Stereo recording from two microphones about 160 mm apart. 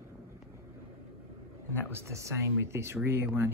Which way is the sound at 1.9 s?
15° right (ahead or behind).